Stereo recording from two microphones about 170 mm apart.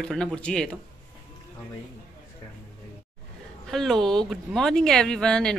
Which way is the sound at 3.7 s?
5° left (ahead or behind).